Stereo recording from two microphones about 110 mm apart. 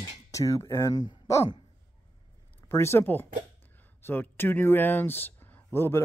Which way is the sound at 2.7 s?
25° left (ahead or behind).